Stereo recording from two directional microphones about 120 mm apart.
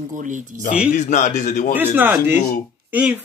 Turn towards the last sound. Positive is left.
turn(degrees=-15)  # may be behind; listen again after turning